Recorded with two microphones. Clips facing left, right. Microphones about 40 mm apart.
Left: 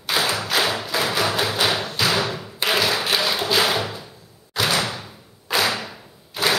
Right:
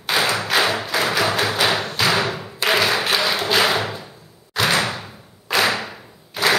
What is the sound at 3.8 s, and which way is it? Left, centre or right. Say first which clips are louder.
Door: right 3 dB; right.